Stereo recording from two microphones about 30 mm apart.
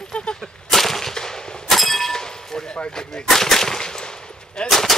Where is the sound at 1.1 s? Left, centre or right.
Centre.